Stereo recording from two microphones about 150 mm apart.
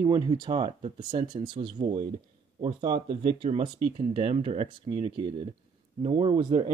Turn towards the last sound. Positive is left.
turn(degrees=-40)  # may be behind; listen again after turning